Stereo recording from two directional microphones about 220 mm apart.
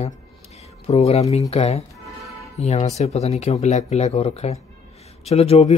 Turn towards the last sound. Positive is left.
turn(degrees=30)  # may be behind; listen again after turning